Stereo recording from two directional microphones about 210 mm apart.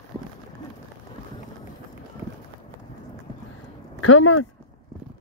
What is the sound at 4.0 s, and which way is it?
Speech, 80° left.